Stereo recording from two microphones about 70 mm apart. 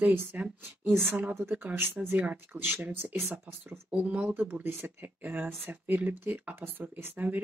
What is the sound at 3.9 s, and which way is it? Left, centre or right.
Speech, centre.